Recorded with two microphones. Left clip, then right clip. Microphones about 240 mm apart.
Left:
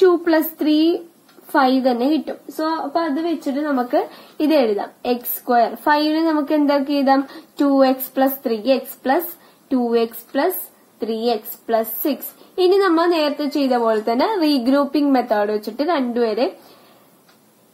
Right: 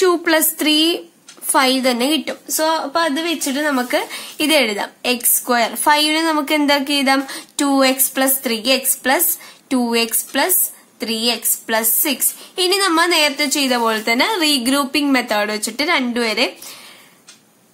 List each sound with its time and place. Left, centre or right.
0.0 s a woman's voice: right
12.6 s a woman's voice: right
12.9 s a woman's voice: right
15.6 s a woman's voice: right
15.9 s a woman's voice: right